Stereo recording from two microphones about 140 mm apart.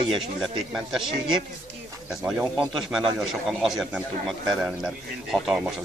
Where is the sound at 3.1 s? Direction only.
5° right (ahead or behind).